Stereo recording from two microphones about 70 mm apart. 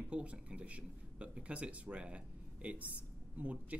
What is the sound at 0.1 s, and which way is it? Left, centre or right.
Speech, centre.